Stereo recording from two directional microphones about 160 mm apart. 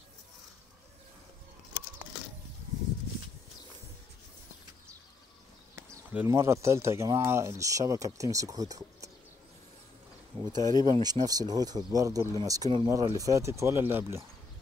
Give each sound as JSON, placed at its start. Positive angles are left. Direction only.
{"t": 6.0, "sound": "speech", "side_deg": -15}
{"t": 10.4, "sound": "speech", "side_deg": -25}